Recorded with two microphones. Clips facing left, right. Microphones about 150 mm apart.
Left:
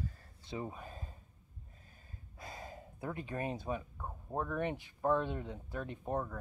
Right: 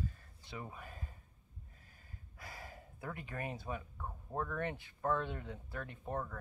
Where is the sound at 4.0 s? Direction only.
15° left (ahead or behind).